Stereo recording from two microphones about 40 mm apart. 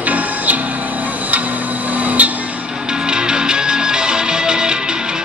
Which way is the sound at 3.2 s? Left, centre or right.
Centre.